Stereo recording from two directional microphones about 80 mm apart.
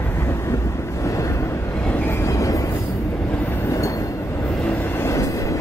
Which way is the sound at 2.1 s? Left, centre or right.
Left.